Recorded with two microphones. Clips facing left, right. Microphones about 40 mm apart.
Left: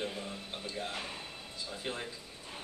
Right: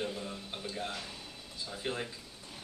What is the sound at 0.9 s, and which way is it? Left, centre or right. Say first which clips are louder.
Speech: left 2 dB; left.